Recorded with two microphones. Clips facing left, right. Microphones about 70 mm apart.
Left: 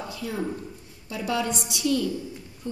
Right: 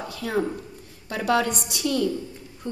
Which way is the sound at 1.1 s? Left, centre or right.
Right.